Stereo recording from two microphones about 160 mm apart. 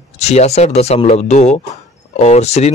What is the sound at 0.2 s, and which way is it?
A man's voice, 45° left (ahead or behind).